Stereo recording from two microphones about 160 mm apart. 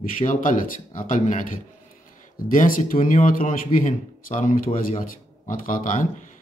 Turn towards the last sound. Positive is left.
turn(degrees=55)  # may be behind; listen again after turning